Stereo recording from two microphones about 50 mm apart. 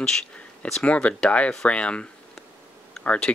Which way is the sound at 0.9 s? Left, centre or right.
Left.